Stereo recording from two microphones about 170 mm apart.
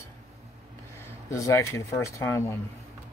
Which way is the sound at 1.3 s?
15° left (ahead or behind).